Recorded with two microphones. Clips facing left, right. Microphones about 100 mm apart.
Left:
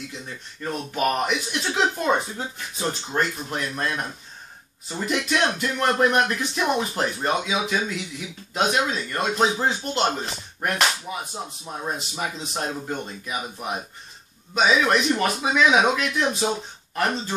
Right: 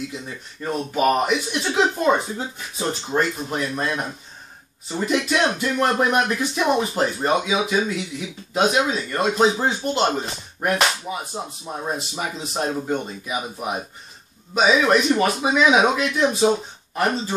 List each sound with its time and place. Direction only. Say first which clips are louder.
0.6 s speech: right 4 dB; 10° right (ahead or behind)